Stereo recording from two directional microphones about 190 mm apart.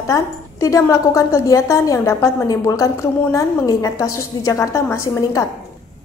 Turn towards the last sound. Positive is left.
turn(degrees=15)  # may be behind; listen again after turning